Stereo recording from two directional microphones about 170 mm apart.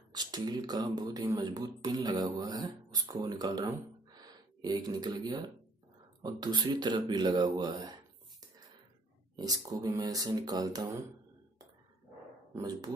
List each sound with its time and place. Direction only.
0.1 s speech: 25° right (ahead or behind)
9.4 s speech: 20° right (ahead or behind)
12.5 s speech: 20° right (ahead or behind)